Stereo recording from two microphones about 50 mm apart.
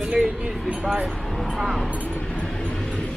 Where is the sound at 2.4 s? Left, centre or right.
Centre.